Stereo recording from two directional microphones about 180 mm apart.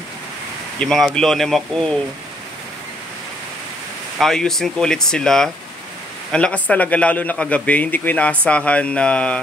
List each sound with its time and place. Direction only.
0.7 s speech: 5° left (ahead or behind)
4.2 s a man's voice: centre (ahead or behind)